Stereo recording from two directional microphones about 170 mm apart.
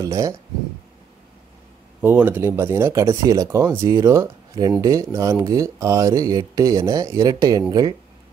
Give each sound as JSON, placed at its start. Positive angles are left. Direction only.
{"t": 0.0, "sound": "speech", "side_deg": -20}
{"t": 2.0, "sound": "speech", "side_deg": -10}